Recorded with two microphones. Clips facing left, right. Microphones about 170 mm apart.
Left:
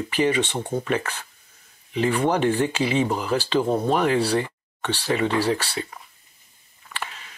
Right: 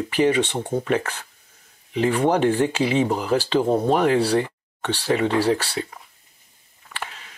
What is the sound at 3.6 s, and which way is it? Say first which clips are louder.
Speech: right 2 dB; 25° right (ahead or behind).